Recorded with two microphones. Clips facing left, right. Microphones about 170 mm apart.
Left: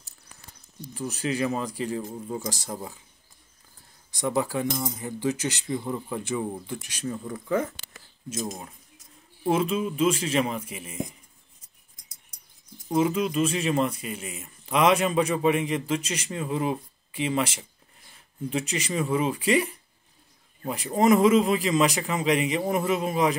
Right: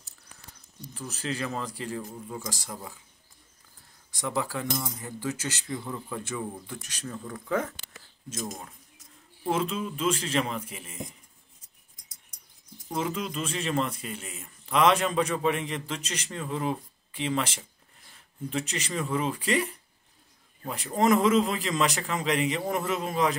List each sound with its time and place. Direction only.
0.9 s speech: 15° left (ahead or behind)
4.1 s speech: 20° left (ahead or behind)
7.4 s speech: 5° left (ahead or behind)
9.4 s speech: 10° left (ahead or behind)
12.9 s speech: 10° left (ahead or behind)